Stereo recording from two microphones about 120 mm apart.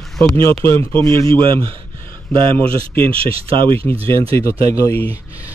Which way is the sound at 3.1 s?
50° right (ahead or behind).